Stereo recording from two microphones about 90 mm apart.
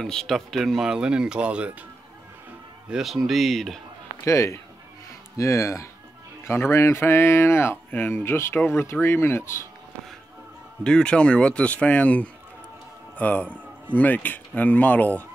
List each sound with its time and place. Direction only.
0.0 s speech: 5° left (ahead or behind); by 1.9 s 15° right (ahead or behind)
2.9 s speech: 5° right (ahead or behind)
4.2 s speech: 35° left (ahead or behind)
10.8 s a man's voice: 10° left (ahead or behind)